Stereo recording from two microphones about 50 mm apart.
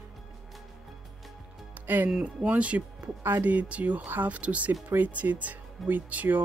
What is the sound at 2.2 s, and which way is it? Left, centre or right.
Speech, right.